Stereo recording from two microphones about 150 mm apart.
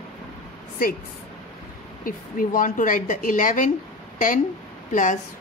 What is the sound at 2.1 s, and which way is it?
Speech, 65° left (ahead or behind).